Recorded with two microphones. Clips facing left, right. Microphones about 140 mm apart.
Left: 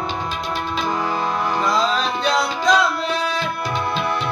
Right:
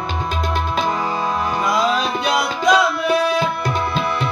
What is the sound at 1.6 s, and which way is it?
Music, 10° right (ahead or behind).